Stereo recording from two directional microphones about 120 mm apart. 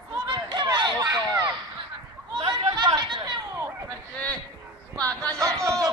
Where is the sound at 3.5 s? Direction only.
20° right (ahead or behind).